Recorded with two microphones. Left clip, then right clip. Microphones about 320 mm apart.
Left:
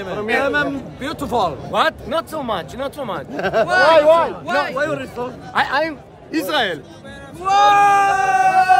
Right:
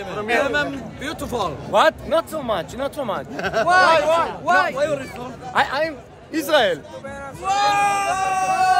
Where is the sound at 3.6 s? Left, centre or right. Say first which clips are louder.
Even; centre.